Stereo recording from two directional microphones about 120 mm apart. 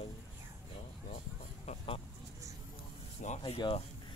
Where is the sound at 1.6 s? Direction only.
50° left (ahead or behind).